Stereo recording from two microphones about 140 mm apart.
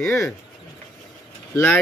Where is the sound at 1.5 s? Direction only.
10° left (ahead or behind).